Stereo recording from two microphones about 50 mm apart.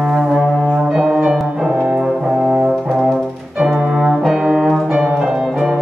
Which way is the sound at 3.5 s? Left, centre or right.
Centre.